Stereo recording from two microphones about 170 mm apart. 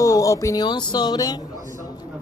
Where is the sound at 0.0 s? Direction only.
20° left (ahead or behind).